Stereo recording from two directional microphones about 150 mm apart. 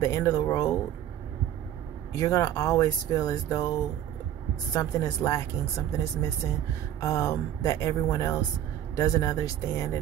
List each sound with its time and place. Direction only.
0.0 s speech: 20° left (ahead or behind)
2.1 s speech: 25° left (ahead or behind)
4.7 s speech: 20° left (ahead or behind)